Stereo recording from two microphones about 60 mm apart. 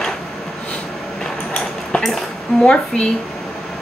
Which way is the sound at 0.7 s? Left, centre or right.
Centre.